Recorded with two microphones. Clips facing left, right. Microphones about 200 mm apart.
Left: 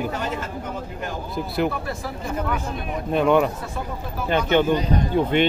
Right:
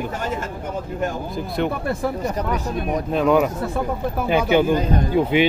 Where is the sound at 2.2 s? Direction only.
40° right (ahead or behind).